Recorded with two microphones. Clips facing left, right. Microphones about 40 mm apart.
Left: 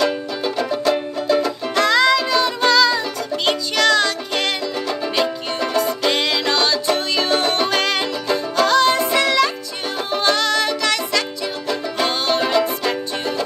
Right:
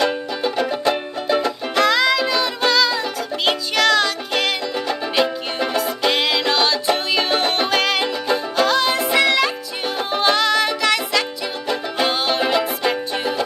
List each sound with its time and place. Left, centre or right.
0.0 s music: centre
1.8 s music: centre
5.8 s music: centre